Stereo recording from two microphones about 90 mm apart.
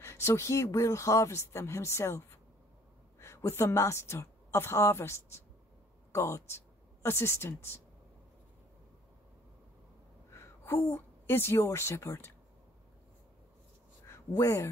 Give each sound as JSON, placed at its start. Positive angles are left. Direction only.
{"t": 0.0, "sound": "a woman's voice", "side_deg": 30}
{"t": 10.3, "sound": "a woman's voice", "side_deg": 30}
{"t": 14.0, "sound": "speech", "side_deg": 35}